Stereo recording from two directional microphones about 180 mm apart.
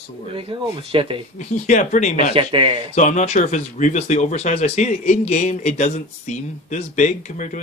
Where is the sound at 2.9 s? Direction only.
40° left (ahead or behind).